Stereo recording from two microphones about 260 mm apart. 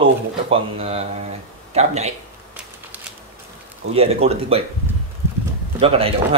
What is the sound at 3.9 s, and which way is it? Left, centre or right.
Speech, right.